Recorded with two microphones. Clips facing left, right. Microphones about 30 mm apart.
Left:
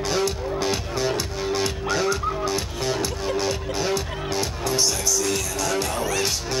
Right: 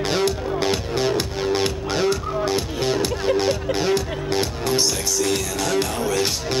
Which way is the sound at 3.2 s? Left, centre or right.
Right.